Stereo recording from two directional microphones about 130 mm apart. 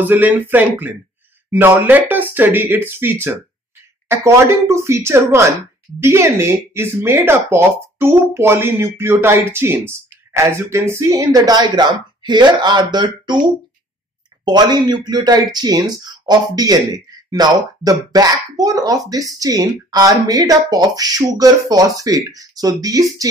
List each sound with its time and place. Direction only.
0.0 s speech: 15° right (ahead or behind); by 13.4 s 35° right (ahead or behind)
14.4 s speech: 35° right (ahead or behind)